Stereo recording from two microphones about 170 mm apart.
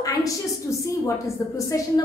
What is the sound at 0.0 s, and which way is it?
A woman's voice, 20° left (ahead or behind).